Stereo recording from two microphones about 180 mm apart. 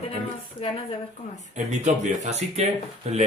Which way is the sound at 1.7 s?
40° right (ahead or behind).